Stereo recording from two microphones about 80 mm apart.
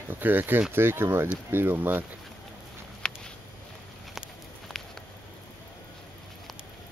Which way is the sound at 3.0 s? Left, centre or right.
Centre.